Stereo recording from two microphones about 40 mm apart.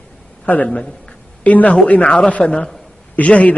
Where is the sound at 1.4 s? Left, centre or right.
Left.